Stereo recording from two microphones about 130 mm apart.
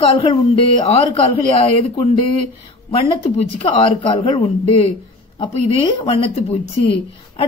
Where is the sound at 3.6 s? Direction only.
45° left (ahead or behind).